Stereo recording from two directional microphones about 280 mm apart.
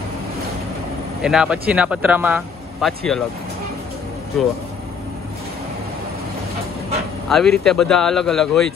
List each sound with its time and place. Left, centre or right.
1.2 s speech: centre
7.2 s speech: centre